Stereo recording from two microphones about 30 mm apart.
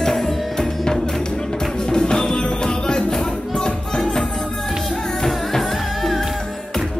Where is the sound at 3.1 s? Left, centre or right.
Centre.